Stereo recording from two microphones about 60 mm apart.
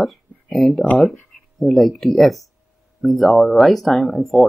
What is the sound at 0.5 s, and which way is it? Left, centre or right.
Speech, centre.